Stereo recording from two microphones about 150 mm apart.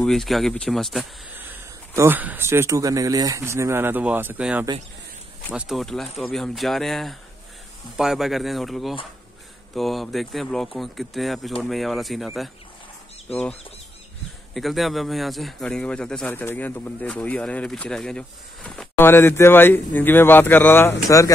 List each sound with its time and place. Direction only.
0.0 s speech: centre (ahead or behind)
2.0 s speech: 15° right (ahead or behind)
13.3 s speech: 10° left (ahead or behind)
14.5 s speech: centre (ahead or behind); by 21.3 s 20° left (ahead or behind)